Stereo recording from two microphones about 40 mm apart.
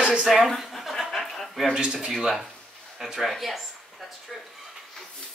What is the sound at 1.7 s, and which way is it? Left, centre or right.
Speech, centre.